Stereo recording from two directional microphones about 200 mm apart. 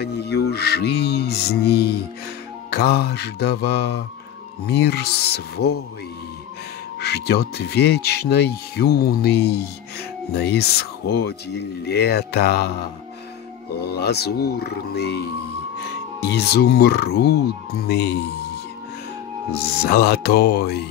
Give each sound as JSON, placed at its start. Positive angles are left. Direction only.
{"t": 0.0, "sound": "speech", "side_deg": 55}
{"t": 7.0, "sound": "speech", "side_deg": 55}
{"t": 13.7, "sound": "speech", "side_deg": 55}
{"t": 16.3, "sound": "speech", "side_deg": 55}
{"t": 19.8, "sound": "speech", "side_deg": 50}